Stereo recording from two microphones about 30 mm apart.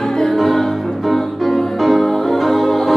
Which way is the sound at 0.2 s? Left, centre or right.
Centre.